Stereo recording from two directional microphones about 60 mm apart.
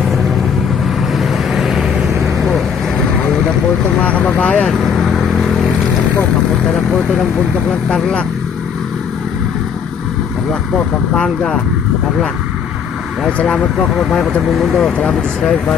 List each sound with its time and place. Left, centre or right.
1.1 s vehicle: centre
4.3 s speech: left
4.7 s vehicle: centre
11.2 s speech: centre
14.5 s speech: centre
15.0 s speech: centre